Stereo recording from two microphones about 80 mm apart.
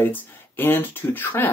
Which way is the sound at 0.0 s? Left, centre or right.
Left.